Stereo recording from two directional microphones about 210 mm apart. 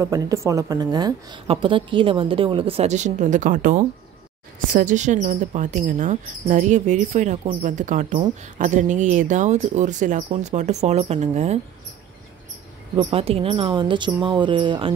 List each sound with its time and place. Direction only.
0.0 s a woman's voice: 15° right (ahead or behind); by 11.6 s 30° right (ahead or behind)
12.9 s a woman's voice: 25° right (ahead or behind)